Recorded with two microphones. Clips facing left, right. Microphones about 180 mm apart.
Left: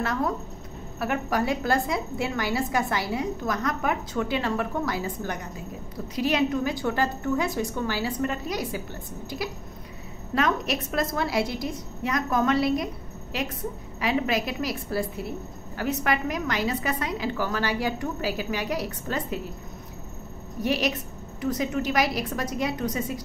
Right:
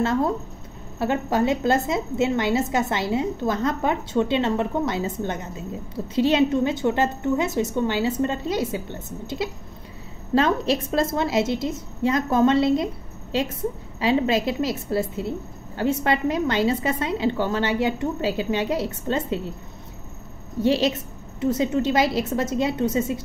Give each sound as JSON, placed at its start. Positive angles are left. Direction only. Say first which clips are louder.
{"t": 0.0, "sound": "a woman's voice", "louder": "right 5 dB", "side_deg": -25}
{"t": 20.6, "sound": "a woman's voice", "louder": "right 5 dB", "side_deg": -25}